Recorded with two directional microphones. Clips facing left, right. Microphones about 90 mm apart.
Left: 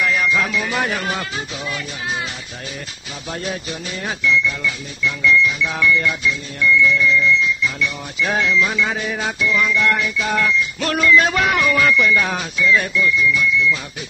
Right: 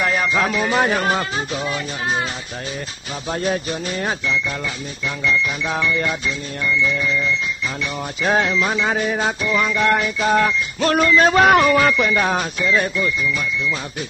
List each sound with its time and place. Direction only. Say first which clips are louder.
0.0 s speech: even; 35° right (ahead or behind)
3.3 s speech: right 5 dB; 40° right (ahead or behind)